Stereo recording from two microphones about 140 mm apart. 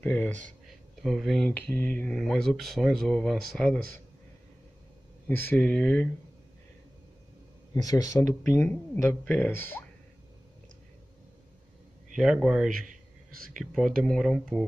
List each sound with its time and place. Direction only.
0.0 s speech: 10° left (ahead or behind)
0.7 s a sound: centre (ahead or behind)
1.5 s speech: 10° left (ahead or behind)
5.4 s speech: 10° left (ahead or behind)
7.7 s speech: 25° left (ahead or behind)
12.2 s speech: 5° right (ahead or behind)
13.7 s speech: centre (ahead or behind)